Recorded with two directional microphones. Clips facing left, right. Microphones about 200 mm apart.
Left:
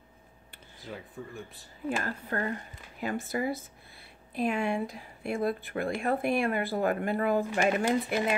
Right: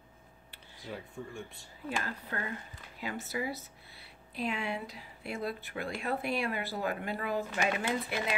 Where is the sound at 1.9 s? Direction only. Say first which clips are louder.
Left 5 dB; 45° left (ahead or behind).